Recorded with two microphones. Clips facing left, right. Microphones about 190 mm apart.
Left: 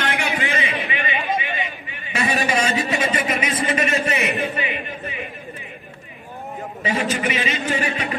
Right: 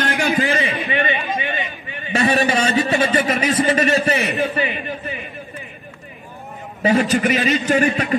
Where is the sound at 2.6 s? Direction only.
35° right (ahead or behind).